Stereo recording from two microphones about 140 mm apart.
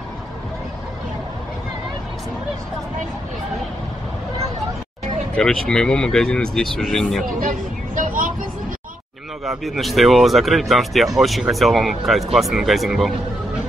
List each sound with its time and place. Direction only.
5.3 s speech: 5° left (ahead or behind)
7.3 s vehicle: 70° right (ahead or behind)
9.4 s speech: centre (ahead or behind)